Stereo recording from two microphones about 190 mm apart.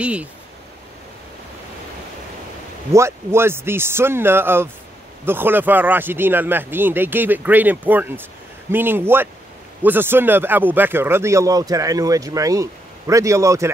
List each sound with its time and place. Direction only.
0.0 s speech: 5° right (ahead or behind)
2.9 s speech: 15° right (ahead or behind)